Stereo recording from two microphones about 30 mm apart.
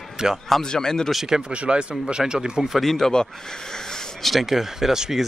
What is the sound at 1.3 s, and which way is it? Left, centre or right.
Speech, right.